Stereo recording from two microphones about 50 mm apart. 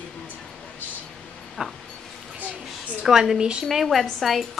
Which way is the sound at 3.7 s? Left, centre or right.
Centre.